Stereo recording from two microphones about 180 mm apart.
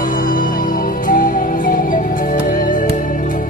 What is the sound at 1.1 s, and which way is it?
Music, 50° left (ahead or behind).